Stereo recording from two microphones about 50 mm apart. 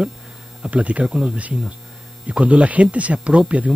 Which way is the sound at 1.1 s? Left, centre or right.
Centre.